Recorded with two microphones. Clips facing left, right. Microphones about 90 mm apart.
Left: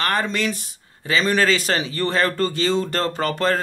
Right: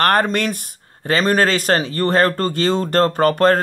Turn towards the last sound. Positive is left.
turn(degrees=-50)  # may be behind; listen again after turning